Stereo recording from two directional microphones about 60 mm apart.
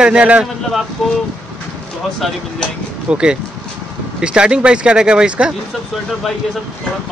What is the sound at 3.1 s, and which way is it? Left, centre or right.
Speech, centre.